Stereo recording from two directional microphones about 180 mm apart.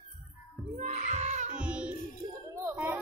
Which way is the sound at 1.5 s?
5° right (ahead or behind).